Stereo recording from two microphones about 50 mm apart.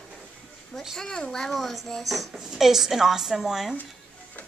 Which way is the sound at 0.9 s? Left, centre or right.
Centre.